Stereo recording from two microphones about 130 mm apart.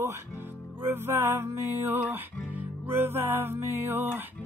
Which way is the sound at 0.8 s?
15° right (ahead or behind).